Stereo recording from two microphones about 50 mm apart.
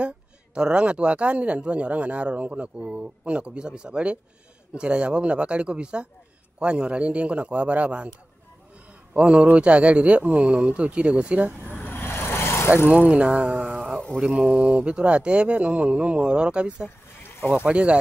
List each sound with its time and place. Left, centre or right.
0.6 s speech: centre
9.1 s speech: right
11.6 s vehicle: left
13.1 s speech: right
13.7 s a sound: centre
14.2 s mantra: centre
14.6 s speech: right